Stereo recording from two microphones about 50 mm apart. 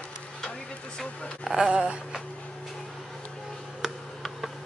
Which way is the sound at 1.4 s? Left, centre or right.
Centre.